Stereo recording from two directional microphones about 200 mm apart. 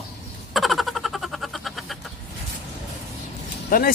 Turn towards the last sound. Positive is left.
turn(degrees=45)  # may be behind; listen again after turning